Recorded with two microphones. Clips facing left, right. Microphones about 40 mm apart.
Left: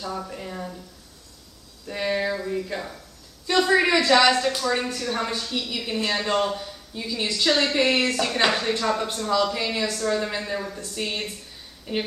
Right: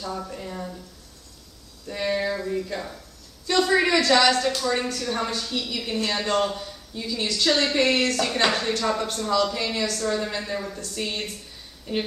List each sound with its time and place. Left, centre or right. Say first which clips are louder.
0.0 s a woman's voice: even; centre
1.9 s a sound: even; centre
3.4 s a woman's voice: left 1 dB; centre